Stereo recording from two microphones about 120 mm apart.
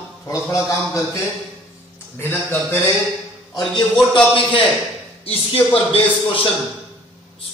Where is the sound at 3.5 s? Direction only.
40° left (ahead or behind).